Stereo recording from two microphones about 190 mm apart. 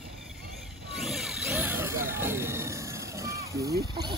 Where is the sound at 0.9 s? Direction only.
Centre (ahead or behind).